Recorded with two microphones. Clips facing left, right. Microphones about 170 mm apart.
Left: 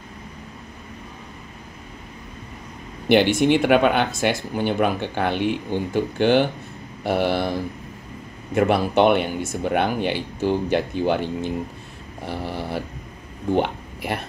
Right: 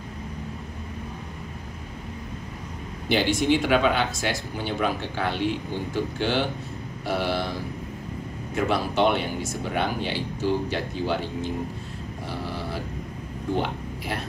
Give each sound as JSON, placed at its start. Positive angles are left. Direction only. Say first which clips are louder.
{"t": 3.1, "sound": "speech", "louder": "left 5 dB", "side_deg": 60}
{"t": 8.5, "sound": "speech", "louder": "left 6 dB", "side_deg": 60}
{"t": 13.6, "sound": "speech", "louder": "left 5 dB", "side_deg": 60}